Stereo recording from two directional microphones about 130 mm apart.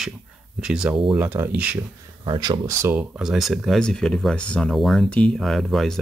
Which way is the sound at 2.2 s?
35° right (ahead or behind).